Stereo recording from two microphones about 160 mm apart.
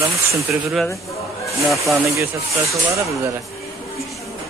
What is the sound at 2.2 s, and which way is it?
Speech, 20° right (ahead or behind).